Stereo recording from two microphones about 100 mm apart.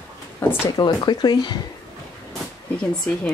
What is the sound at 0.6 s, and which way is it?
Speech, 45° left (ahead or behind).